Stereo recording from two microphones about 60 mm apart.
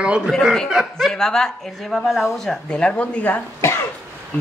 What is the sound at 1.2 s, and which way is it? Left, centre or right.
A man's voice, centre.